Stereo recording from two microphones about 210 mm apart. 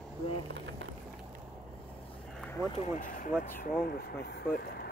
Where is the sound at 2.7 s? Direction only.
35° left (ahead or behind).